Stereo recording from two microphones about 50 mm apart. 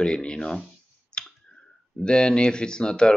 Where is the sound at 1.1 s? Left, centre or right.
Centre.